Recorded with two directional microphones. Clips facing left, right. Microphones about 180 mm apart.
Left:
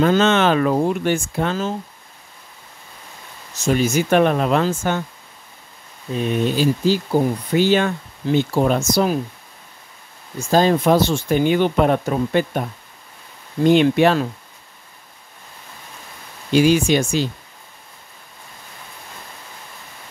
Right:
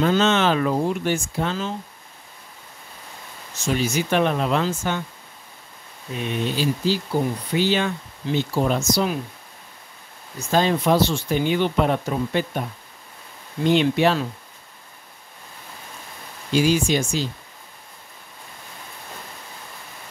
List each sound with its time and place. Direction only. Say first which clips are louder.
0.0 s speech: left 3 dB; 55° left (ahead or behind)
3.5 s speech: left 5 dB; 45° left (ahead or behind)
6.1 s speech: left 6 dB; 45° left (ahead or behind)
10.5 s speech: left 4 dB; 40° left (ahead or behind)
13.7 s speech: left 4 dB; 55° left (ahead or behind)
16.5 s speech: left 4 dB; 65° left (ahead or behind)